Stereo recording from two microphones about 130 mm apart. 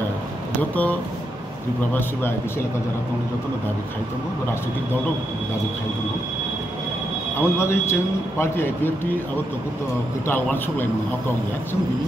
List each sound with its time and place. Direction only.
0.6 s a man's voice: 10° left (ahead or behind)
7.3 s a man's voice: 20° left (ahead or behind)
10.2 s a man's voice: 15° left (ahead or behind)